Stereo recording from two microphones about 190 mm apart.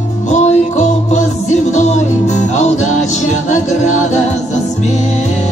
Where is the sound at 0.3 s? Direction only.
35° left (ahead or behind).